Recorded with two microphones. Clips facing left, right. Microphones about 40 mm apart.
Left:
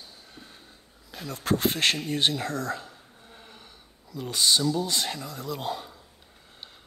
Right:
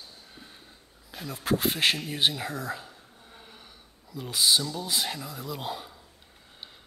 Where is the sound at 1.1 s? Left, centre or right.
Centre.